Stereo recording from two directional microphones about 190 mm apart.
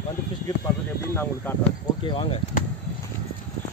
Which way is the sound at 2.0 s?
25° left (ahead or behind).